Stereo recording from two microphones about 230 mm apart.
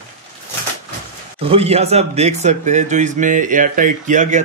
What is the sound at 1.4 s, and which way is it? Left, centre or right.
Speech, right.